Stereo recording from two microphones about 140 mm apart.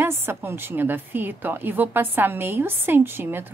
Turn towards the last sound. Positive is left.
turn(degrees=-15)  # may be behind; listen again after turning